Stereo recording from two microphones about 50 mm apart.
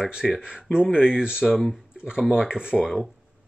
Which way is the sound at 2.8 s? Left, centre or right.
Centre.